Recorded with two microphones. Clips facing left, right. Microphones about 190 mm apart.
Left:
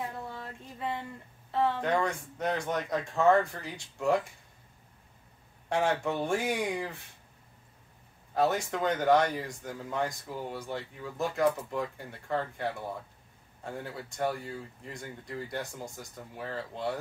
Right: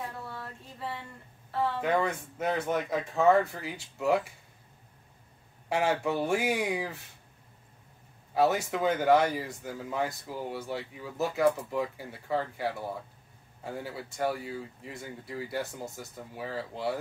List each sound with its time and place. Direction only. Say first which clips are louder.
0.3 s a sound: even; 20° left (ahead or behind)
1.8 s speech: right 1 dB; 5° right (ahead or behind)
5.7 s speech: right 1 dB; 5° right (ahead or behind)
8.4 s speech: right 2 dB; 5° right (ahead or behind)